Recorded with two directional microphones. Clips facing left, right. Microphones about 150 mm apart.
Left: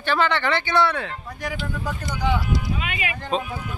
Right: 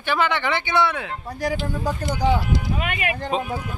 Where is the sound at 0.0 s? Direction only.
10° right (ahead or behind).